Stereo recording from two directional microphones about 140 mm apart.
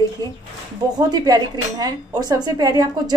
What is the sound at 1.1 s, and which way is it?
A woman's voice, 30° right (ahead or behind).